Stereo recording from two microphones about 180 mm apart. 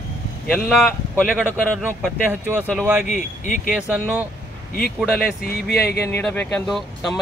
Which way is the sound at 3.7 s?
10° right (ahead or behind).